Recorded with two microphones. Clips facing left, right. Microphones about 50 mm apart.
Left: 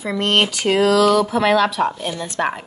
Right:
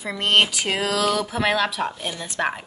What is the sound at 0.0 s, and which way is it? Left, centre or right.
Speech, centre.